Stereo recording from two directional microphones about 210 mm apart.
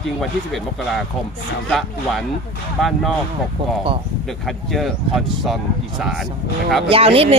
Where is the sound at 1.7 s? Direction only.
Centre (ahead or behind).